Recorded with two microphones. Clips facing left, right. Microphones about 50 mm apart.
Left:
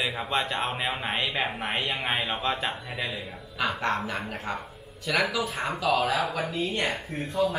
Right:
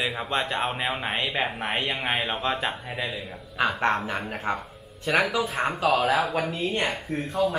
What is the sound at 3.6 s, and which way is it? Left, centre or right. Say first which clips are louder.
Speech: right 4 dB; right.